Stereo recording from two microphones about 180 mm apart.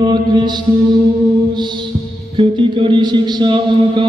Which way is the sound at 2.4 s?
25° right (ahead or behind).